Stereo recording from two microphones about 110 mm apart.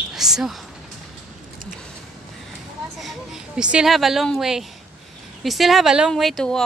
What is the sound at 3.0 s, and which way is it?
Speech, centre (ahead or behind).